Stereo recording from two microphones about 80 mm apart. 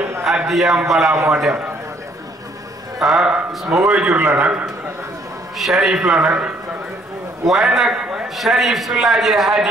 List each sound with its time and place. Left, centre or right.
0.5 s a man's voice: centre
3.0 s speech: centre
3.3 s speech: centre
3.7 s a man's voice: centre
4.1 s a man's voice: right
4.4 s speech: centre
5.6 s a man's voice: centre